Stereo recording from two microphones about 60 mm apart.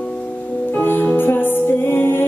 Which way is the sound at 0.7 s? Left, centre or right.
Left.